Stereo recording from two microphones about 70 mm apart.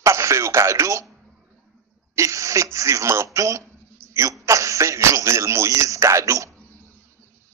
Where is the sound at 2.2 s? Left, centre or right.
Right.